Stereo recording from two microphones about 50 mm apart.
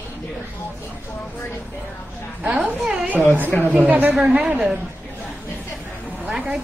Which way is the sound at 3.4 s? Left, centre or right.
Left.